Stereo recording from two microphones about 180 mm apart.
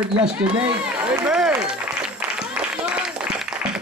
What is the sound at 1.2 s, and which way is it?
Run, 5° right (ahead or behind).